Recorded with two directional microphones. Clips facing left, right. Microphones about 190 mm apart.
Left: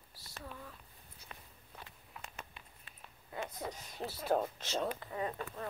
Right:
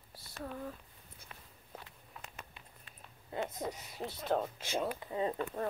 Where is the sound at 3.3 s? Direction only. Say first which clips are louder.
Right 4 dB; 25° right (ahead or behind).